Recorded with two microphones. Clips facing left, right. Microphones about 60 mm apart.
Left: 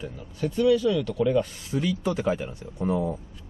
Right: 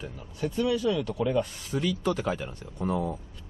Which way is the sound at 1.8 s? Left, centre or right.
Centre.